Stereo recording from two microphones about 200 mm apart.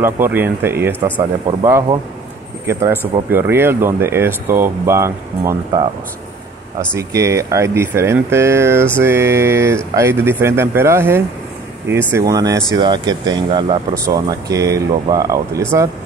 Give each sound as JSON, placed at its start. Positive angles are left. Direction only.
{"t": 0.0, "sound": "speech", "side_deg": -10}
{"t": 6.9, "sound": "speech", "side_deg": -15}